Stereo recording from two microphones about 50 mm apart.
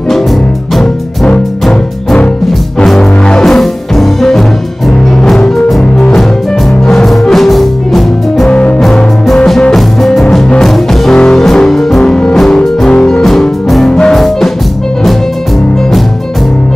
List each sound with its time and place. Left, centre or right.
0.1 s music: centre
8.5 s music: left
8.7 s music: centre